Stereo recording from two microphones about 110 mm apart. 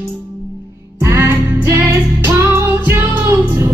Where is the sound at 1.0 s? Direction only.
20° right (ahead or behind).